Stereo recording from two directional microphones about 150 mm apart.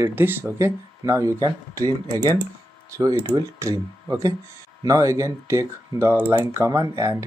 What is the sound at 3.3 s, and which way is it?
Speech, 20° right (ahead or behind).